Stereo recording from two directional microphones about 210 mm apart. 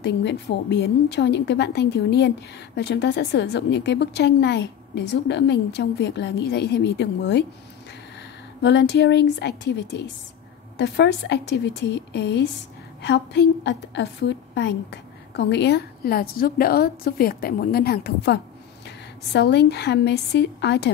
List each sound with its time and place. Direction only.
0.0 s a woman's voice: 55° left (ahead or behind)
8.6 s a woman's voice: 55° left (ahead or behind)